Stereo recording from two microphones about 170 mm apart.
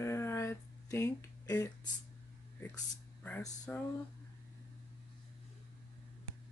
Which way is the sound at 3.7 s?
10° left (ahead or behind).